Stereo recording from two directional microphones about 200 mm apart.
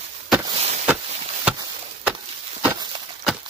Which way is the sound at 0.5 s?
30° right (ahead or behind).